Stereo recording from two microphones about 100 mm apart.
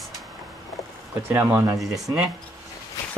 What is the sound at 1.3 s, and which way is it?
Speech, 25° right (ahead or behind).